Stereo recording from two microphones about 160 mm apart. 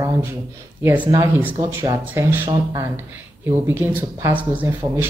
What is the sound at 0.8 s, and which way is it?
Speech, 10° right (ahead or behind).